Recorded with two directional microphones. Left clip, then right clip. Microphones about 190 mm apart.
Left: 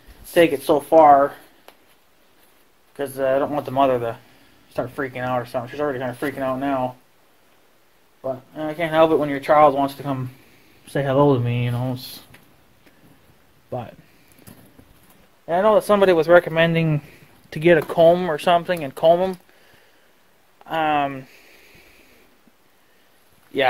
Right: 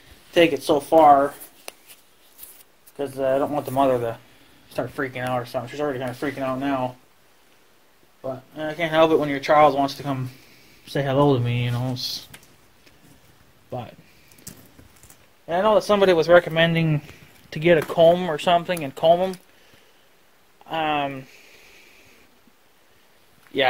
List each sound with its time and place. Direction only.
0.3 s speech: 15° left (ahead or behind)
3.0 s speech: 15° left (ahead or behind)
8.2 s speech: 20° left (ahead or behind)
13.7 s speech: 20° left (ahead or behind)
15.4 s speech: 20° left (ahead or behind)
20.6 s a sound: 20° left (ahead or behind)